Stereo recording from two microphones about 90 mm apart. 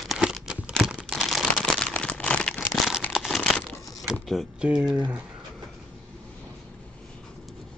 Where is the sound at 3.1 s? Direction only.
Centre (ahead or behind).